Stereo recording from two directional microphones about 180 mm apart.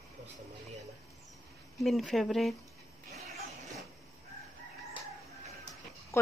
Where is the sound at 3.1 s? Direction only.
40° right (ahead or behind).